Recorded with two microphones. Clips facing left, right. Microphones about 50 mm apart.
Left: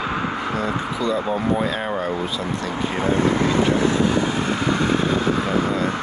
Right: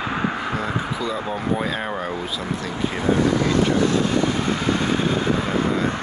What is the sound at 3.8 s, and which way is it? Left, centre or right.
Speech, left.